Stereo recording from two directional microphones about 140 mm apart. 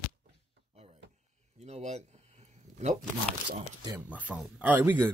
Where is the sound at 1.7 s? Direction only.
55° right (ahead or behind).